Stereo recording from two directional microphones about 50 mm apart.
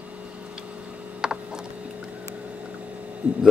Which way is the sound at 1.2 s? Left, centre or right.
Centre.